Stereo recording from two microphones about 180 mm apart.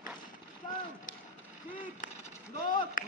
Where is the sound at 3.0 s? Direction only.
50° left (ahead or behind).